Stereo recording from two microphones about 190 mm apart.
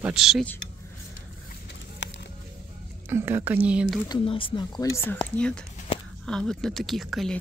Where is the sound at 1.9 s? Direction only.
70° left (ahead or behind).